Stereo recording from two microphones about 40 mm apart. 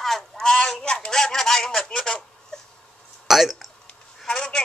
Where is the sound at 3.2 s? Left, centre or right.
Centre.